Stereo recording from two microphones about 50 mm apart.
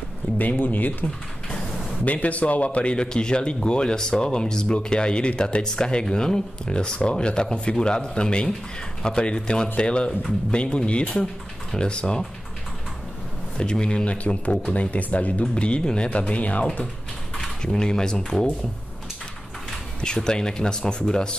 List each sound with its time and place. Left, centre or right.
0.4 s speech: left
2.0 s speech: left
13.6 s speech: centre
15.5 s speech: centre
17.4 s speech: centre
20.0 s speech: centre